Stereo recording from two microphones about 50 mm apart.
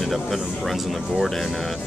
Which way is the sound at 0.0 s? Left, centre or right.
Centre.